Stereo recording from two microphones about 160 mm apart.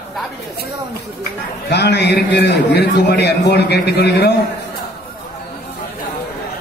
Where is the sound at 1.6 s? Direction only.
90° left.